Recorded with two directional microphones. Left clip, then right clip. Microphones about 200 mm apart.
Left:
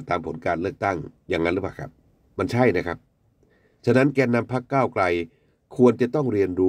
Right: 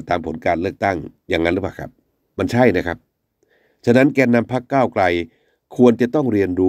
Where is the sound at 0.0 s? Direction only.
35° right (ahead or behind).